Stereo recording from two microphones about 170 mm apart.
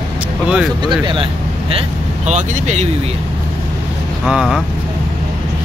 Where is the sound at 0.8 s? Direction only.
25° right (ahead or behind).